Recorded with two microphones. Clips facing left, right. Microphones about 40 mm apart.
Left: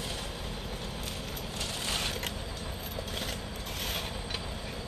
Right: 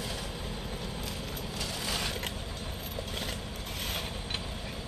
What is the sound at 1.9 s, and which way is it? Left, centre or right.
Mechanisms, left.